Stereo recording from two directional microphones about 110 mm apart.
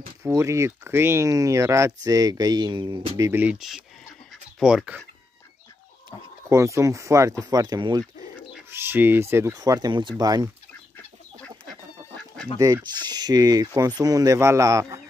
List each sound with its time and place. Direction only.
0.2 s speech: 25° right (ahead or behind); by 3.2 s 45° right (ahead or behind)
3.2 s speech: 25° right (ahead or behind)
3.4 s speech: 5° right (ahead or behind)
6.5 s speech: 25° right (ahead or behind)
7.4 s speech: 40° right (ahead or behind)
8.6 s speech: 20° right (ahead or behind)
9.6 s speech: 35° right (ahead or behind)
12.5 s speech: 30° right (ahead or behind)